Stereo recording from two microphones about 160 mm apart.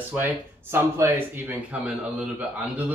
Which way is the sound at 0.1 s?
15° right (ahead or behind).